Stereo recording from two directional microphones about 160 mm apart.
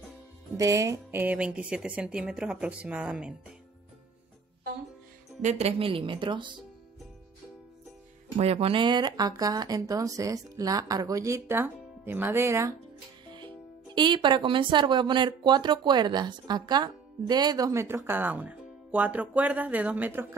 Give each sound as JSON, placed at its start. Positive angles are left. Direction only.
{"t": 0.6, "sound": "a woman's voice", "side_deg": -20}
{"t": 5.4, "sound": "a woman's voice", "side_deg": -45}
{"t": 8.4, "sound": "speech", "side_deg": -40}
{"t": 13.9, "sound": "speech", "side_deg": -30}